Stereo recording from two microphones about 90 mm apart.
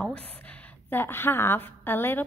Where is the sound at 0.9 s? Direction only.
25° left (ahead or behind).